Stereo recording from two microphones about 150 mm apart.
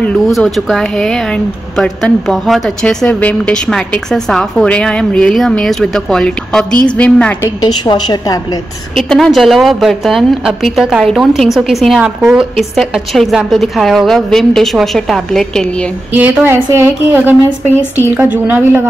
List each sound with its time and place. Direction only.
0.0 s a woman's voice: 5° left (ahead or behind)
7.4 s a woman's voice: 30° left (ahead or behind)
8.9 s speech: centre (ahead or behind)
16.1 s a woman's voice: 10° right (ahead or behind)